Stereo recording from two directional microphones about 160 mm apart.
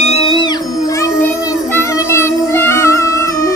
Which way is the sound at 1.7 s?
15° left (ahead or behind).